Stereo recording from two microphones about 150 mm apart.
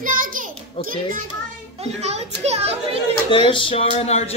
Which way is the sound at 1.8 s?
45° right (ahead or behind).